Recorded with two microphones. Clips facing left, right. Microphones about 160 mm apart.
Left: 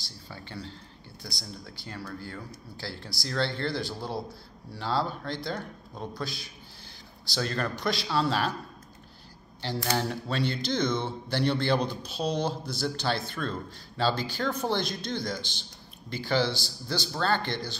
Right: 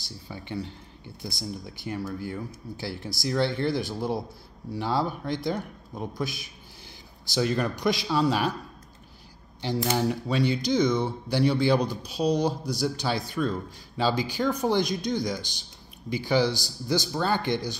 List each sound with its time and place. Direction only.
0.3 s speech: 15° right (ahead or behind)
9.6 s speech: 20° right (ahead or behind)